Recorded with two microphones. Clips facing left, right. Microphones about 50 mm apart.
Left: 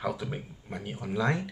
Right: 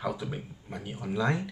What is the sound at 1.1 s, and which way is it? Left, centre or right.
Speech, centre.